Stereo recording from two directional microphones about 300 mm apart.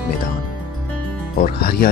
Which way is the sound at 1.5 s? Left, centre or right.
Left.